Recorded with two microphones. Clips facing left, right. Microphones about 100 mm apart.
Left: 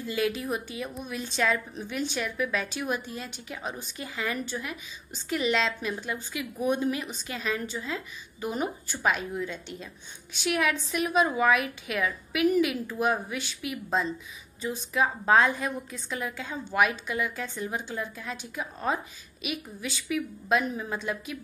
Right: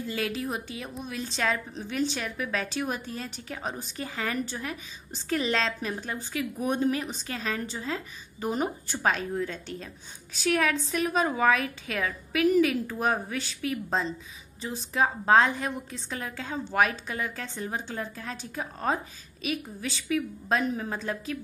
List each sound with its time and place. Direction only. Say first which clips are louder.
0.1 s a woman's voice: left 4 dB; 35° right (ahead or behind)